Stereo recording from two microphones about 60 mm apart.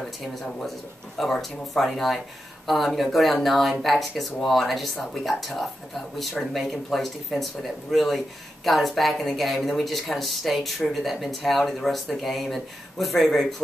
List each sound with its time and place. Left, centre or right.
0.0 s speech: centre